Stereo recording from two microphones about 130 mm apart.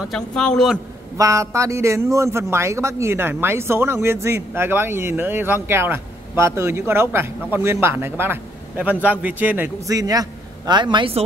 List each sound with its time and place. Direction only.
0.1 s a man's voice: 5° left (ahead or behind)
1.1 s a man's voice: 25° right (ahead or behind)
9.8 s a man's voice: 25° right (ahead or behind)